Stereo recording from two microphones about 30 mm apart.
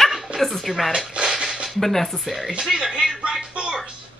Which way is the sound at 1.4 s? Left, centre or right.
Right.